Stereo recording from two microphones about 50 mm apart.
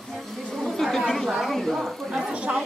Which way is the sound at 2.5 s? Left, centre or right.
Right.